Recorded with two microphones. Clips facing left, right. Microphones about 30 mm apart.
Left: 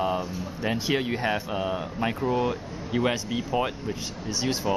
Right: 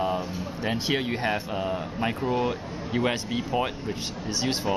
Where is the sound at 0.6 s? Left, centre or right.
Right.